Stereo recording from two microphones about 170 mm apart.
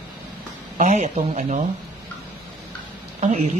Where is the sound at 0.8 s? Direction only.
45° right (ahead or behind).